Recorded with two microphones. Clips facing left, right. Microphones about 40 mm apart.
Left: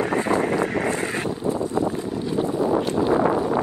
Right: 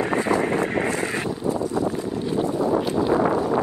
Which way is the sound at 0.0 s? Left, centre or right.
Right.